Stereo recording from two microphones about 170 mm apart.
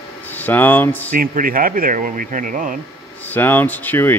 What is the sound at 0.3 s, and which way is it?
Speech, 10° left (ahead or behind).